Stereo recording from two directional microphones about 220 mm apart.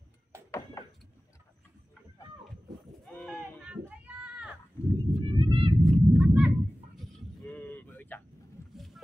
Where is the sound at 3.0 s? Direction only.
Centre (ahead or behind).